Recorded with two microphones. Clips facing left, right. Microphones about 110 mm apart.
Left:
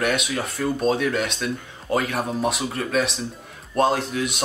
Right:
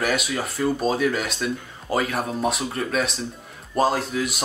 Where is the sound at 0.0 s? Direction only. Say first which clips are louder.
Left 1 dB; centre (ahead or behind).